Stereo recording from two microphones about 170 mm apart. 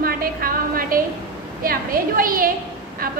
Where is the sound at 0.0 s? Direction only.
60° right (ahead or behind).